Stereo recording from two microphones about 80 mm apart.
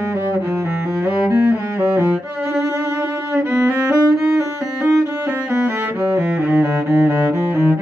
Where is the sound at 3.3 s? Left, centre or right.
Right.